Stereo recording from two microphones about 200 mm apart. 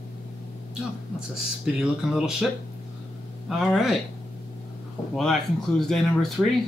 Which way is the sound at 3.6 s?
Centre (ahead or behind).